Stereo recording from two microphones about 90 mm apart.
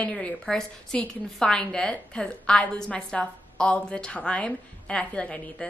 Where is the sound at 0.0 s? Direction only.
10° left (ahead or behind).